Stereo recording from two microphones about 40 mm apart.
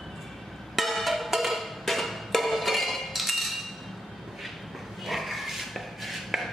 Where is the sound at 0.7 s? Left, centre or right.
Centre.